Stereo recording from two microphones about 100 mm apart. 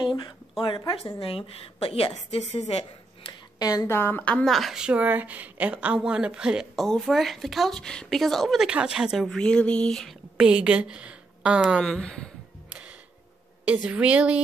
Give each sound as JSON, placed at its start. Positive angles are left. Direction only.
{"t": 0.0, "sound": "a sound", "side_deg": 55}
{"t": 0.8, "sound": "speech", "side_deg": 40}
{"t": 1.2, "sound": "a woman's voice", "side_deg": 70}
{"t": 3.5, "sound": "speech", "side_deg": 40}
{"t": 3.9, "sound": "a woman's voice", "side_deg": 20}
{"t": 4.5, "sound": "a woman's voice", "side_deg": 0}
{"t": 10.3, "sound": "a woman's voice", "side_deg": -10}
{"t": 11.8, "sound": "speech", "side_deg": 5}
{"t": 13.7, "sound": "a woman's voice", "side_deg": -10}